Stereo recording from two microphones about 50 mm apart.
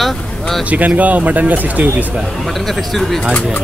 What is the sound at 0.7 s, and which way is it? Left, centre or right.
Speech, right.